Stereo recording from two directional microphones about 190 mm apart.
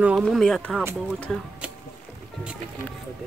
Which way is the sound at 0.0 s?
Centre (ahead or behind).